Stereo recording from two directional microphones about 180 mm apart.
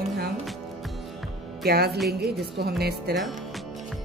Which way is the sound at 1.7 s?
65° right (ahead or behind).